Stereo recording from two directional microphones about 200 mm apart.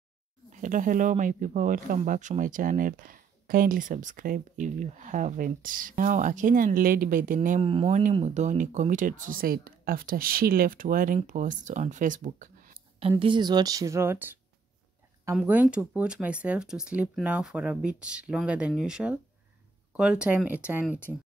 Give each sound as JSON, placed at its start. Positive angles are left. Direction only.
{"t": 0.5, "sound": "speech", "side_deg": -40}
{"t": 7.6, "sound": "speech", "side_deg": -30}
{"t": 13.2, "sound": "speech", "side_deg": -25}
{"t": 15.3, "sound": "speech", "side_deg": -5}